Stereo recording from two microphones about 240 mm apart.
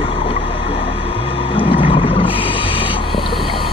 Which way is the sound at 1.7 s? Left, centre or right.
Left.